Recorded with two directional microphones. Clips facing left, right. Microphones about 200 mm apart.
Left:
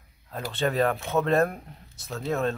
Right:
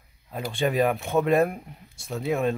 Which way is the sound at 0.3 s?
15° right (ahead or behind).